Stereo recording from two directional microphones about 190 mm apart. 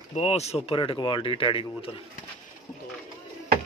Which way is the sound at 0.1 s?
35° left (ahead or behind).